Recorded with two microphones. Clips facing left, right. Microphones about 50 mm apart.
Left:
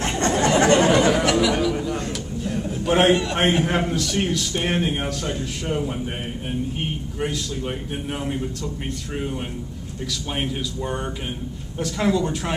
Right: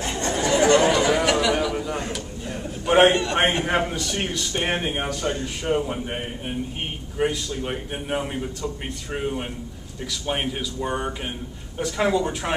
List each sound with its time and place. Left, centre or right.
0.2 s chatter: left
0.7 s chatter: left
1.0 s a sound: centre
6.8 s a man's voice: centre